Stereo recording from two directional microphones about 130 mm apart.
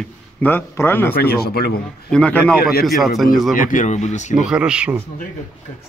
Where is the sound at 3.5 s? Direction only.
90° left; by 4.3 s 65° left (ahead or behind).